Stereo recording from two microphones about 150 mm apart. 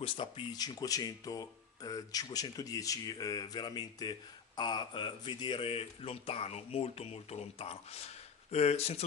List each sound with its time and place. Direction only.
0.0 s speech: 35° left (ahead or behind)